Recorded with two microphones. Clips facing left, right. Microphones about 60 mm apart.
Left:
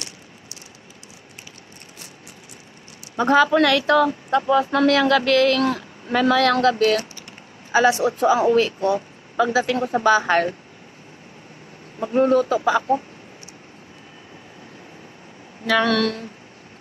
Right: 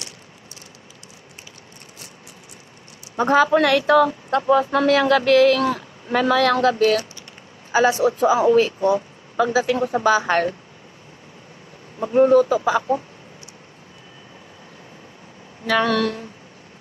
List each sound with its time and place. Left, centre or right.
3.2 s a woman's voice: centre
7.9 s speech: centre
8.5 s a woman's voice: centre
12.0 s a woman's voice: centre
15.6 s speech: centre